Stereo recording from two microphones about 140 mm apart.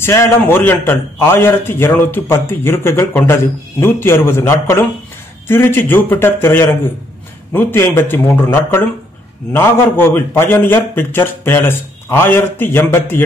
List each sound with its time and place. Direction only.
0.0 s a man's voice: 20° left (ahead or behind)